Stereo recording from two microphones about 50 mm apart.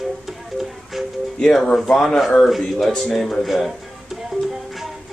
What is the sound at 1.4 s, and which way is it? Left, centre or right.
Speech, centre.